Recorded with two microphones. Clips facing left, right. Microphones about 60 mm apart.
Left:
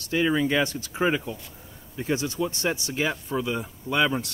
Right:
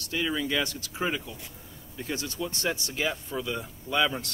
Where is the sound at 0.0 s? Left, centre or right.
Left.